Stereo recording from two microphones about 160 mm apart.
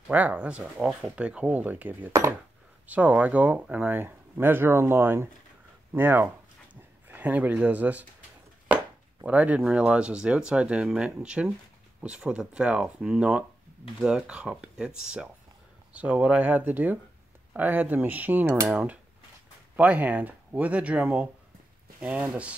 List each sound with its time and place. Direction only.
0.1 s speech: 10° right (ahead or behind)